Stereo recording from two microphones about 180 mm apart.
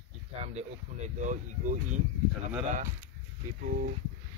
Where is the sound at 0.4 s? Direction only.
40° right (ahead or behind).